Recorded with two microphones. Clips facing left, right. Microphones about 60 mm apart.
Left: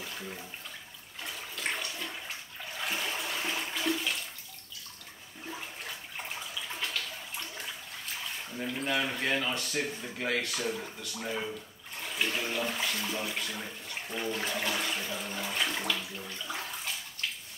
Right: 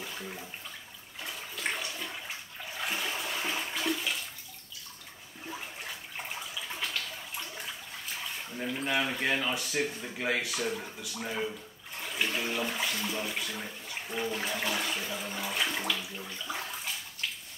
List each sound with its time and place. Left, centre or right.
0.0 s bathtub: centre
1.2 s toilet flush: centre
5.5 s water: centre
10.0 s speech: centre